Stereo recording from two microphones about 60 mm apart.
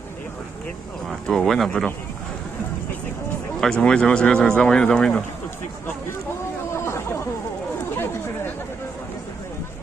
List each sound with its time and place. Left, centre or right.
1.2 s speech: centre
3.6 s speech: centre
6.7 s hubbub: left